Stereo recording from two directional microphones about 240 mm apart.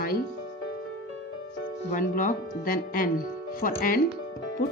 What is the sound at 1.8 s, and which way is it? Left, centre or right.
Music, left.